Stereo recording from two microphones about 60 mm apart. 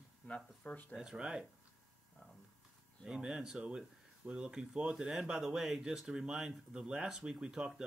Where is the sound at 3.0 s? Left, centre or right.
Centre.